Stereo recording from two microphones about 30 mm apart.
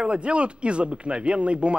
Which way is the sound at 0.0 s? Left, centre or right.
Right.